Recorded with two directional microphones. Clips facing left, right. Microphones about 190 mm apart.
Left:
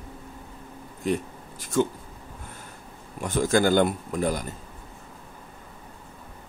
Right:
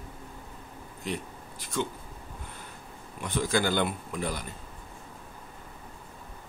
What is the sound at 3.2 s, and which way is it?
Speech, 45° left (ahead or behind).